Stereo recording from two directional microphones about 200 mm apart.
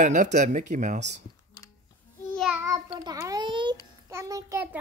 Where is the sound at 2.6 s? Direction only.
20° right (ahead or behind).